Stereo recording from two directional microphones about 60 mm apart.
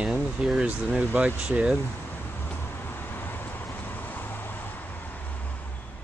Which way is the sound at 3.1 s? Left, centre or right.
Left.